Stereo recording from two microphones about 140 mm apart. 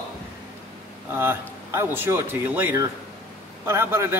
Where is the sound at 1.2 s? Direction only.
15° right (ahead or behind).